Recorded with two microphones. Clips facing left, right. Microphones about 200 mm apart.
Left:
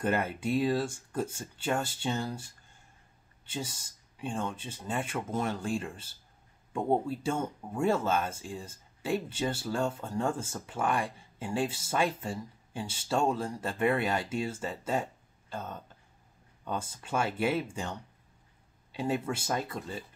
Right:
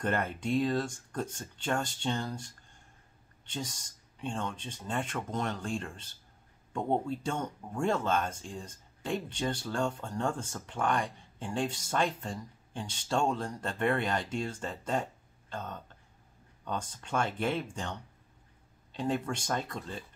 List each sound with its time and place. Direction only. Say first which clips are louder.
0.0 s speech: left 2 dB; 5° left (ahead or behind)